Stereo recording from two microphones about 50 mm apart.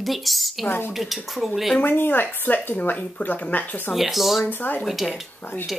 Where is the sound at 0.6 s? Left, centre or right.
Left.